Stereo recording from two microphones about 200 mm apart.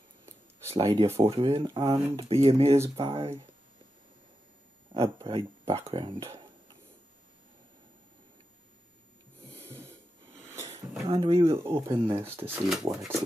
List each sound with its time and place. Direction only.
0.7 s speech: 30° right (ahead or behind)
4.9 s speech: 30° right (ahead or behind)
11.1 s speech: 25° right (ahead or behind)
11.7 s speech: 15° right (ahead or behind)
12.4 s speech: centre (ahead or behind)